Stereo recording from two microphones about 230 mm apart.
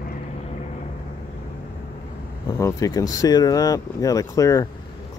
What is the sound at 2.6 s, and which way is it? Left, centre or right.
Speech, centre.